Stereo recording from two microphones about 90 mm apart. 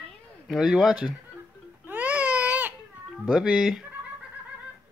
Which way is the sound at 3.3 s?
5° right (ahead or behind).